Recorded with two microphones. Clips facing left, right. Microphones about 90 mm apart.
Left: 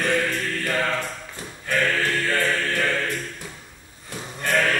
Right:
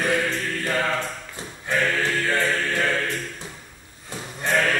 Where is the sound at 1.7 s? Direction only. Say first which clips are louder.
Even; 20° right (ahead or behind).